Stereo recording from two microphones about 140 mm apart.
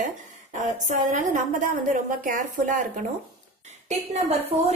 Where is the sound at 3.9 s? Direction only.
50° right (ahead or behind).